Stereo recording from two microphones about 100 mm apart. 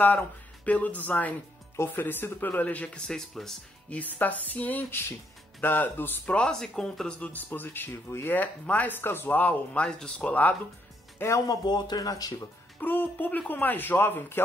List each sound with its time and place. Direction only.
0.7 s speech: 15° left (ahead or behind)
3.1 s speech: 5° left (ahead or behind)
3.9 s speech: 15° left (ahead or behind)
11.1 s speech: 30° left (ahead or behind)
11.6 s speech: 45° left (ahead or behind)
12.8 s speech: 20° left (ahead or behind)